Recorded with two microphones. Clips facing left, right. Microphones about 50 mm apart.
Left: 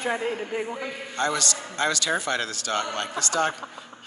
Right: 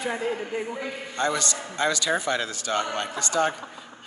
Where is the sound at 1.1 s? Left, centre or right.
Centre.